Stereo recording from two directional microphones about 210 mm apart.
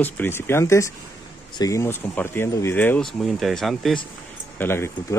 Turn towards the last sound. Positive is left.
turn(degrees=10)  # may be behind; listen again after turning